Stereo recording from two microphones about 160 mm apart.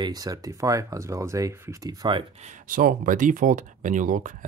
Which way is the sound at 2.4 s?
55° right (ahead or behind).